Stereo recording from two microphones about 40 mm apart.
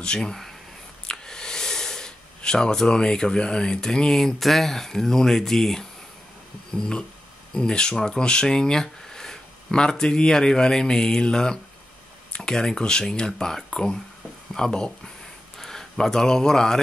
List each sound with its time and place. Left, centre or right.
0.0 s speech: centre
1.0 s a sound: centre
4.4 s speech: centre